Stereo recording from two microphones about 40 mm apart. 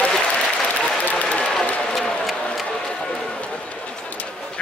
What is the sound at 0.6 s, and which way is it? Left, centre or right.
Applause, left.